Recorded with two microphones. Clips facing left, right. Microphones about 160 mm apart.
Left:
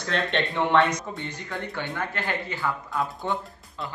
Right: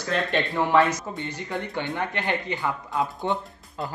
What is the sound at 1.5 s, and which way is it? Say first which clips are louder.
Speech: right 3 dB; 15° right (ahead or behind).